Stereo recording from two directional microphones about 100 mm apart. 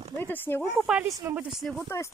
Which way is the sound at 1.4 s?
10° right (ahead or behind).